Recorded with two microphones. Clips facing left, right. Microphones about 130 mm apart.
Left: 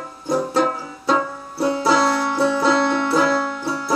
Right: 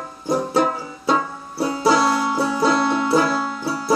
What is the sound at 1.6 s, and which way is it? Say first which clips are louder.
Music: even; 10° right (ahead or behind).